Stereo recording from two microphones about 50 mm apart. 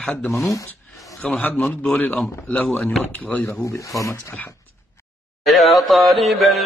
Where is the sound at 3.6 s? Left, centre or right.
Left.